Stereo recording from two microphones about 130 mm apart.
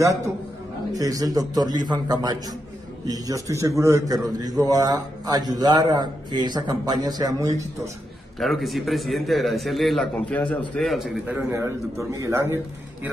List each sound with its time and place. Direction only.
0.9 s a man's voice: 25° right (ahead or behind)
8.4 s a man's voice: centre (ahead or behind)
11.5 s a man's voice: 25° right (ahead or behind)